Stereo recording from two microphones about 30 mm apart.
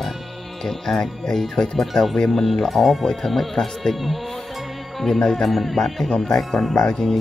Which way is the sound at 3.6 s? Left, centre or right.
Left.